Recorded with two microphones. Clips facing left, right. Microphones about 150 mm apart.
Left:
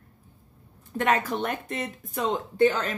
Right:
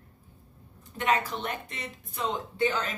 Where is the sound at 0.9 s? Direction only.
50° left (ahead or behind).